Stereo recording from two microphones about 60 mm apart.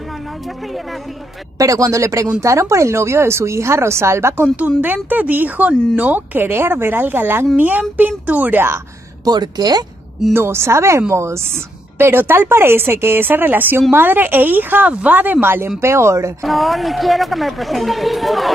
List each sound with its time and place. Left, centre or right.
1.6 s speech: right
4.6 s a woman's voice: right
9.3 s speech: right
10.3 s a woman's voice: right
15.4 s a woman's voice: right
16.4 s speech: centre